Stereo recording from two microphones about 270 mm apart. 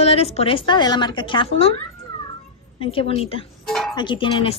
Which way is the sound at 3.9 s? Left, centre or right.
Centre.